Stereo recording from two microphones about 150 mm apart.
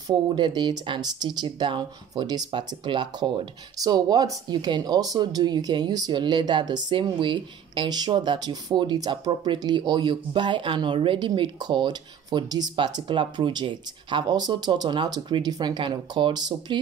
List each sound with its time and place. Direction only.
0.1 s speech: 30° right (ahead or behind)